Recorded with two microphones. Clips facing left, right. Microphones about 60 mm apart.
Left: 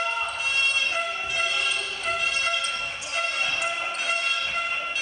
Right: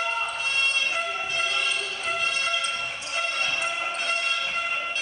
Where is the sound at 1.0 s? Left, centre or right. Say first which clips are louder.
Even; centre.